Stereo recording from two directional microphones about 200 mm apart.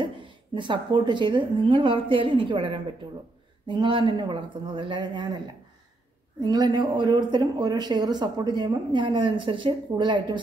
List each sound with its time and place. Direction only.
0.6 s speech: 25° right (ahead or behind)
6.4 s speech: 20° right (ahead or behind)